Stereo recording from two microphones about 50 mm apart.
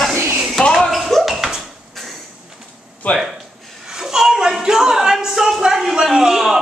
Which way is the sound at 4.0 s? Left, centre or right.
Centre.